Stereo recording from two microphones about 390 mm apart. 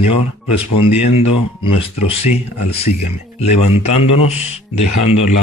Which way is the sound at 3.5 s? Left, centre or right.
Left.